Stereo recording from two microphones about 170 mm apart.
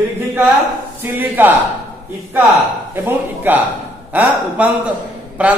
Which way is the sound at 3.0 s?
10° right (ahead or behind).